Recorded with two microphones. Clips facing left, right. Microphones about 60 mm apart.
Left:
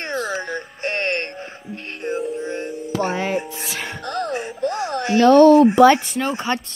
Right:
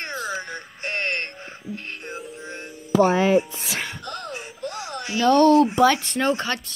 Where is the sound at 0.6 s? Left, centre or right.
Left.